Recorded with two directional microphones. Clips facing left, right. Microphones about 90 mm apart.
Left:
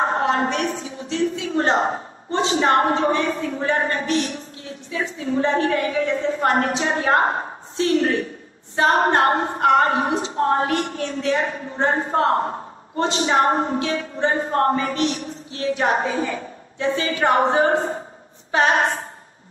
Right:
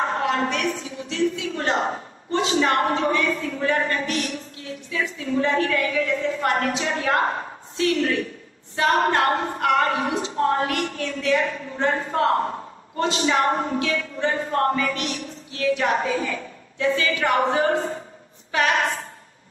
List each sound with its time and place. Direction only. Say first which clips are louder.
0.0 s a woman's voice: left 3 dB; 30° left (ahead or behind)
4.9 s a sound: left 1 dB; 35° left (ahead or behind)
18.5 s a woman's voice: left 3 dB; 30° left (ahead or behind)